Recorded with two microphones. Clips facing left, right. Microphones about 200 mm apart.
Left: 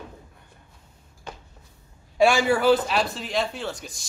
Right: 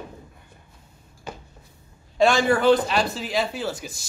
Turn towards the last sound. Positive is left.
turn(degrees=-5)  # may be behind; listen again after turning